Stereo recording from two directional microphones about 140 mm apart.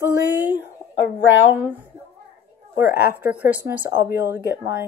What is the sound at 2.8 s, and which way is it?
Speech, 15° right (ahead or behind).